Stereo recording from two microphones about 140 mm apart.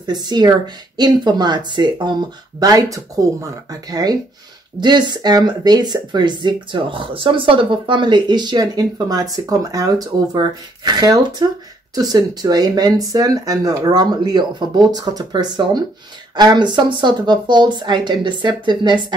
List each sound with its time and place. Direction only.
0.0 s speech: 30° right (ahead or behind)